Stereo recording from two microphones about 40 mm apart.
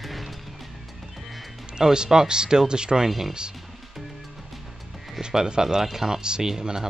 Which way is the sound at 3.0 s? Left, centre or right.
Centre.